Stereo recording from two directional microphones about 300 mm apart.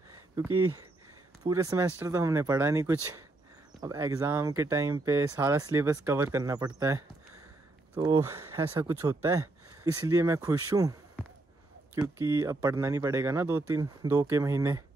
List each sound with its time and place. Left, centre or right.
0.5 s speech: right
1.5 s speech: centre